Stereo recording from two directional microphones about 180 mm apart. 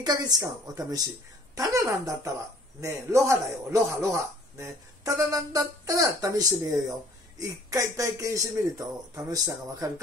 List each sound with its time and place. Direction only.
0.0 s a man's voice: 20° right (ahead or behind)